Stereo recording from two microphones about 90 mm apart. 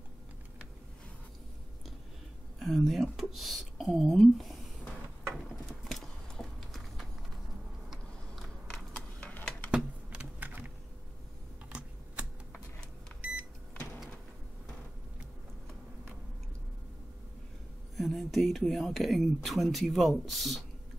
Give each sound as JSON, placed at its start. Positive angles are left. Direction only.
{"t": 2.6, "sound": "speech", "side_deg": 0}
{"t": 5.7, "sound": "clip-clop", "side_deg": 5}
{"t": 7.9, "sound": "a sound", "side_deg": 0}
{"t": 8.9, "sound": "stir", "side_deg": 10}
{"t": 9.7, "sound": "typing", "side_deg": -10}
{"t": 11.7, "sound": "typing", "side_deg": -15}
{"t": 17.9, "sound": "speech", "side_deg": 0}